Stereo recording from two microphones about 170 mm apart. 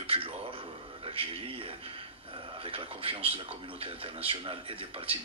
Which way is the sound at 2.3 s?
30° right (ahead or behind).